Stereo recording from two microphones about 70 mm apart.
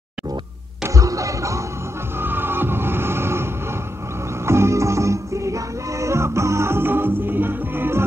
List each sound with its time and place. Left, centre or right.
0.8 s a sound: right
2.1 s music: right
4.5 s music: right